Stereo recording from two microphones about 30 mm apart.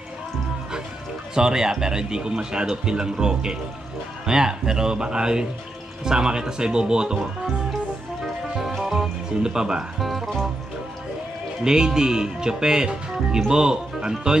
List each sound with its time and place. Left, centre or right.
1.3 s speech: right
8.5 s music: centre
9.4 s speech: right
9.9 s speech: centre
11.6 s speech: right